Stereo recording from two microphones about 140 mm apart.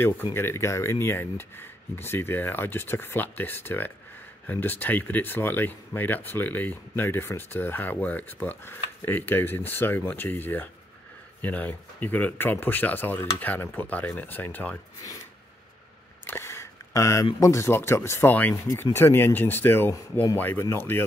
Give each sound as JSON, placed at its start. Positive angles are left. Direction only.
{"t": 0.0, "sound": "speech", "side_deg": 15}
{"t": 16.3, "sound": "a sound", "side_deg": 15}
{"t": 17.4, "sound": "speech", "side_deg": 20}